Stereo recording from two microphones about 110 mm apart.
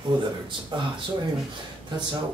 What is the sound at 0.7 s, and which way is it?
Speech, 45° right (ahead or behind).